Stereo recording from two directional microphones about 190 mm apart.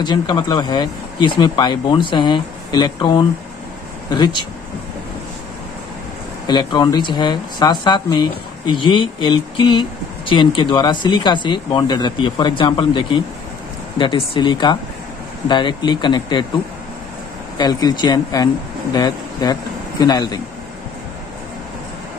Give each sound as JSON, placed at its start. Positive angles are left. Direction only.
{"t": 0.0, "sound": "speech", "side_deg": 25}
{"t": 6.4, "sound": "speech", "side_deg": 25}
{"t": 17.6, "sound": "speech", "side_deg": 20}